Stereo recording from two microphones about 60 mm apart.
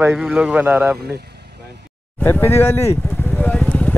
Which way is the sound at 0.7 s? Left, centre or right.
Right.